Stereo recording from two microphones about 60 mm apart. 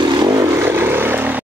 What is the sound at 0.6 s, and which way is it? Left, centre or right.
Vehicle, right.